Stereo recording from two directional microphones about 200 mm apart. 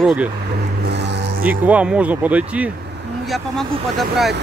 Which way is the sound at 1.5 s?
5° right (ahead or behind).